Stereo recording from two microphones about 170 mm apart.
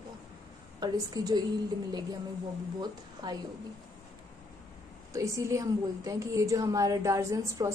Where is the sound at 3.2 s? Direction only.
25° right (ahead or behind).